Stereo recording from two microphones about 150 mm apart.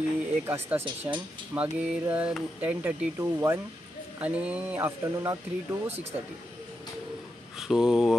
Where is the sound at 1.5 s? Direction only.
10° right (ahead or behind).